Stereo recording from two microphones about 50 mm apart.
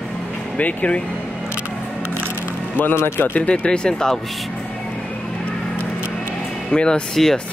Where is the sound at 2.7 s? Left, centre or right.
Left.